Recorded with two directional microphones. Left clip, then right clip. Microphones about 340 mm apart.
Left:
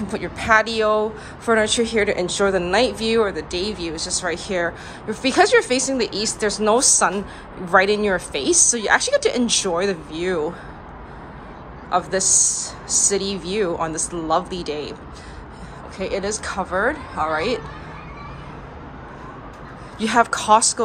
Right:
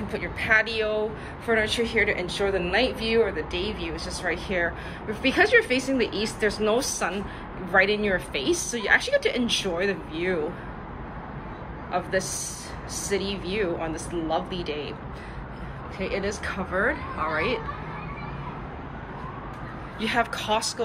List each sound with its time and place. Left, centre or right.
0.1 s speech: centre
11.9 s speech: centre
16.0 s speech: centre
20.0 s speech: centre